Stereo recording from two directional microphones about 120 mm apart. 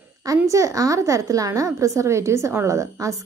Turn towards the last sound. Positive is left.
turn(degrees=-25)  # may be behind; listen again after turning